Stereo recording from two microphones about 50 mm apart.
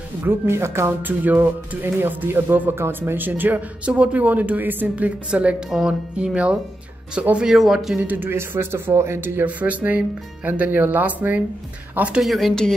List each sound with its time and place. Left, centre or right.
0.2 s speech: right
1.0 s speech: right
3.8 s speech: right
5.7 s music: centre
6.1 s speech: right
7.5 s a man's voice: centre
8.0 s speech: right
8.3 s speech: right
9.2 s speech: right
9.6 s speech: right
12.2 s a man's voice: centre